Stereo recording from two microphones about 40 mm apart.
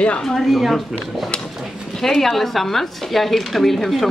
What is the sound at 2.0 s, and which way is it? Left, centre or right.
Speech, centre.